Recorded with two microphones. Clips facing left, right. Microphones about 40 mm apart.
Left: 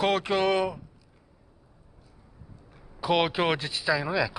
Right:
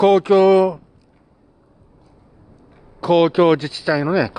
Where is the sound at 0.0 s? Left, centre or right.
Centre.